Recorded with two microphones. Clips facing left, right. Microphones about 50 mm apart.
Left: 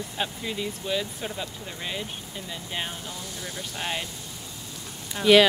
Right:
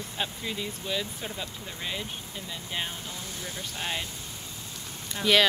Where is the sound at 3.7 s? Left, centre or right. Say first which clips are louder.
Left 2 dB; left.